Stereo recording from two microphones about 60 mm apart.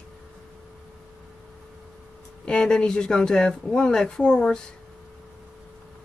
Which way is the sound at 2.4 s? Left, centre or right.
Centre.